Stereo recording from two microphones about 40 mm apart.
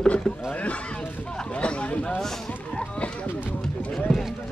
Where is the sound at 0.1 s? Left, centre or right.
Left.